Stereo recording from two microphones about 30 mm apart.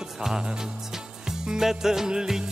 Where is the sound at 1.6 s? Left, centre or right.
Centre.